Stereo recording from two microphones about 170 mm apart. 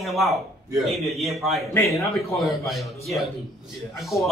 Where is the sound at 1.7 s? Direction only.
15° left (ahead or behind).